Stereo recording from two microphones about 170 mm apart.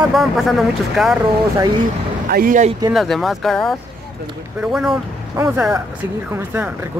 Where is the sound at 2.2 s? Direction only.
60° right (ahead or behind).